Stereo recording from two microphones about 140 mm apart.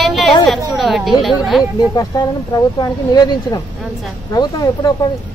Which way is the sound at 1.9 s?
25° left (ahead or behind).